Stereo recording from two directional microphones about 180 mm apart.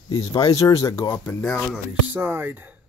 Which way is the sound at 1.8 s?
15° right (ahead or behind).